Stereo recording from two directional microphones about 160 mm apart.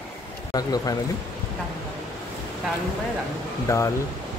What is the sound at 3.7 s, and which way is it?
Speech, 20° left (ahead or behind).